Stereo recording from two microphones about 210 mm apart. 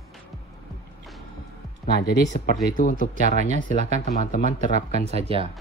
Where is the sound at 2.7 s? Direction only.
40° left (ahead or behind).